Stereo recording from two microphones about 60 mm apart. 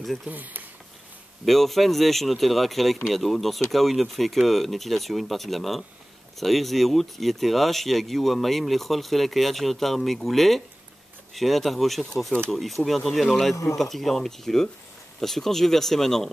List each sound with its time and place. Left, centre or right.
0.0 s speech: centre
0.3 s speech: right
1.4 s speech: centre